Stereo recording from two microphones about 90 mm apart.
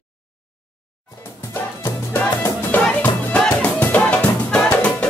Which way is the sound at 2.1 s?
20° left (ahead or behind).